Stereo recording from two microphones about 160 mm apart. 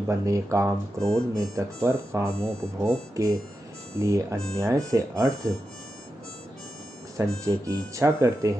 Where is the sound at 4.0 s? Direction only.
20° right (ahead or behind).